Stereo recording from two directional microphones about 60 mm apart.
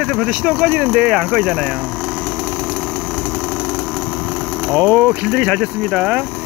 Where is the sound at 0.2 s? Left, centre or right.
Centre.